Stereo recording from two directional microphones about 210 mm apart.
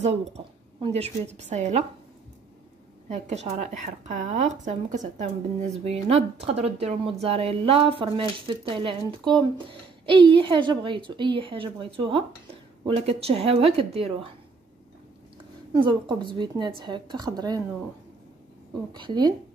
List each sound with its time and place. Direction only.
0.7 s speech: 30° right (ahead or behind)
3.1 s speech: 35° right (ahead or behind)
15.7 s speech: 20° right (ahead or behind)
18.9 s speech: 20° right (ahead or behind)